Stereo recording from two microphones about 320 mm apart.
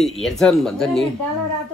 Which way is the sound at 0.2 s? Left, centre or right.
Centre.